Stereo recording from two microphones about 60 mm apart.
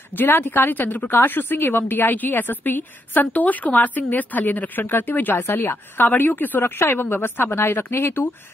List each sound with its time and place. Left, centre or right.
0.2 s a woman's voice: left